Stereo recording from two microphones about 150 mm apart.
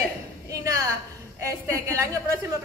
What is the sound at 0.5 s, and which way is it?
A woman's voice, 25° right (ahead or behind).